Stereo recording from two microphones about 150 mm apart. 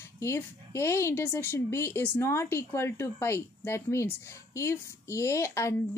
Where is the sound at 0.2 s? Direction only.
20° left (ahead or behind).